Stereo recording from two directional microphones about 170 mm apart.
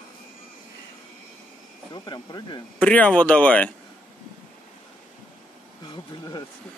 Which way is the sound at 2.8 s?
5° left (ahead or behind).